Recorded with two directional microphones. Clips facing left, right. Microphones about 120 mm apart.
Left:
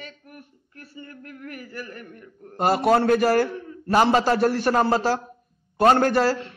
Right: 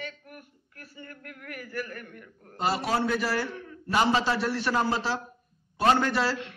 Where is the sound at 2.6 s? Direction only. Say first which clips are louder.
Left 8 dB; 55° left (ahead or behind).